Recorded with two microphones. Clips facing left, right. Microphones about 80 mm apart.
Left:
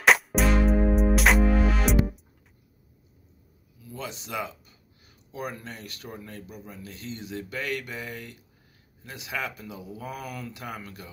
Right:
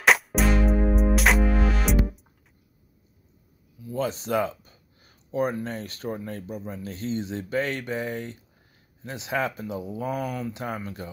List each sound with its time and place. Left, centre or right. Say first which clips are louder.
0.0 s music: even; centre
3.9 s speech: right 9 dB; right